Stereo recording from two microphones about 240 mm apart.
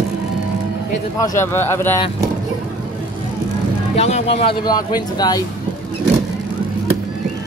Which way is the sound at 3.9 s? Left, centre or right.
Left.